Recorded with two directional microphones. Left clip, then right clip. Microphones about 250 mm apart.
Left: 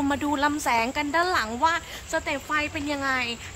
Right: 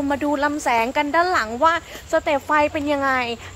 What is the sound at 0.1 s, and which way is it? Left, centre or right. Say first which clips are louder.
A woman's voice: right 6 dB; centre.